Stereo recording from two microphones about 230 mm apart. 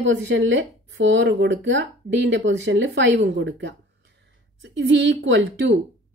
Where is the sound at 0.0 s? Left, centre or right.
Right.